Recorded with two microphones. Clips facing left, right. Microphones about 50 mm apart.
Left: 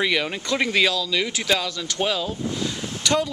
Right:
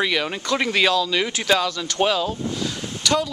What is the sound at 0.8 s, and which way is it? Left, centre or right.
Speech, right.